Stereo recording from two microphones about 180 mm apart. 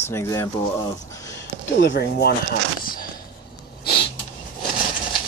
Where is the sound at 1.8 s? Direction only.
70° left (ahead or behind).